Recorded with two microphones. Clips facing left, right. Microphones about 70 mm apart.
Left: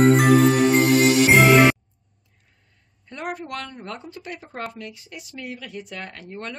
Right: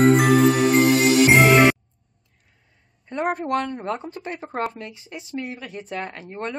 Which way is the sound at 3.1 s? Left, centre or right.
Right.